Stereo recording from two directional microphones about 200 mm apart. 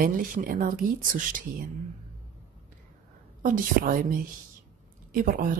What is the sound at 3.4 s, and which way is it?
Speech, 40° right (ahead or behind).